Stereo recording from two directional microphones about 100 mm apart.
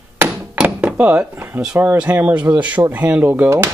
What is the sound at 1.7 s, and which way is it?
Speech, 15° right (ahead or behind).